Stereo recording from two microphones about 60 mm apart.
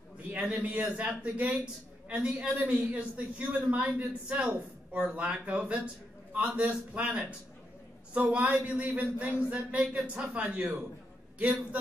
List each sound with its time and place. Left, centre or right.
0.3 s a man's voice: right